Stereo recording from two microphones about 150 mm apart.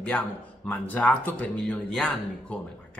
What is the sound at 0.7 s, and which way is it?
Mantra, 10° left (ahead or behind).